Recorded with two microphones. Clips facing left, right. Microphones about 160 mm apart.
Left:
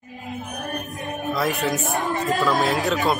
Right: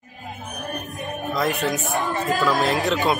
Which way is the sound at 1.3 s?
Centre (ahead or behind).